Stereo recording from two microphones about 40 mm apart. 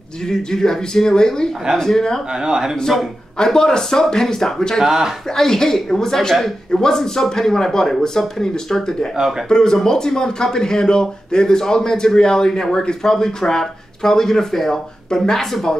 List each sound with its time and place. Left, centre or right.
0.3 s a man's voice: centre
2.3 s a man's voice: centre
3.3 s a man's voice: centre
4.8 s a man's voice: centre
5.3 s a man's voice: centre